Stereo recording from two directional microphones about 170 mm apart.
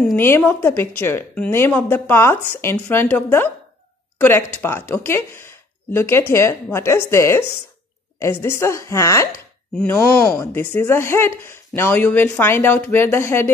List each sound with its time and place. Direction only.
0.1 s a woman's voice: 15° left (ahead or behind)
9.8 s a woman's voice: 5° left (ahead or behind)